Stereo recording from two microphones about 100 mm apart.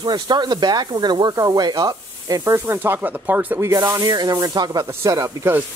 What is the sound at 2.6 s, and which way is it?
Speech, 25° right (ahead or behind).